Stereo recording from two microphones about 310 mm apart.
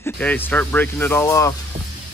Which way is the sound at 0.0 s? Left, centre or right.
Centre.